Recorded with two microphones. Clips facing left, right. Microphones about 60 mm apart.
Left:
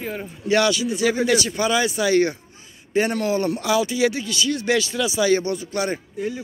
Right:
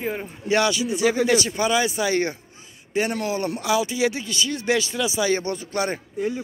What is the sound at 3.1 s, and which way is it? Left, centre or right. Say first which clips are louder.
Speech: left 4 dB; centre.